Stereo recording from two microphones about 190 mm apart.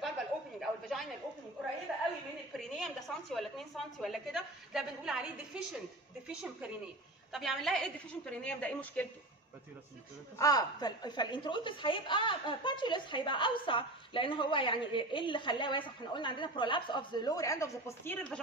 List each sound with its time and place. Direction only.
0.6 s a sound: centre (ahead or behind)
1.9 s a woman's voice: centre (ahead or behind)
10.3 s a woman's voice: 20° left (ahead or behind)